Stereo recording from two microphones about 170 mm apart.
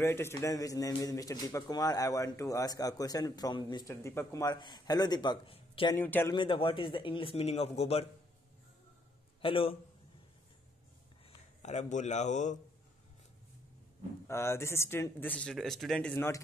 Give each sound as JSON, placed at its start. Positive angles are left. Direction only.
{"t": 0.0, "sound": "speech", "side_deg": 15}
{"t": 5.9, "sound": "speech", "side_deg": 10}
{"t": 6.3, "sound": "a man's voice", "side_deg": 30}
{"t": 9.4, "sound": "a man's voice", "side_deg": 35}
{"t": 11.2, "sound": "speech", "side_deg": 40}
{"t": 14.2, "sound": "speech", "side_deg": 15}